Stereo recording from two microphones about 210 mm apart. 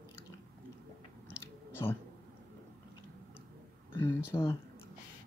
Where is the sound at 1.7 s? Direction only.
10° left (ahead or behind).